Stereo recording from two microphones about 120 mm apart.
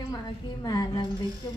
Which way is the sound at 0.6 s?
30° left (ahead or behind).